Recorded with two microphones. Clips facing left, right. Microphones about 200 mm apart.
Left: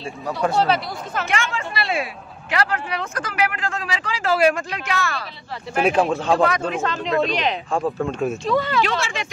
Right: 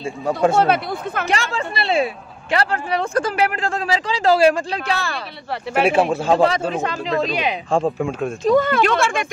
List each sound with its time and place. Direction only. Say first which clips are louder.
0.6 s speech: right 3 dB; 55° right (ahead or behind)
1.2 s speech: right 1 dB; 35° right (ahead or behind)
5.8 s speech: right 2 dB; 5° right (ahead or behind)
6.3 s speech: right 3 dB; 30° right (ahead or behind)
7.1 s speech: left 1 dB; 5° right (ahead or behind)
8.5 s speech: right 7 dB; 50° right (ahead or behind)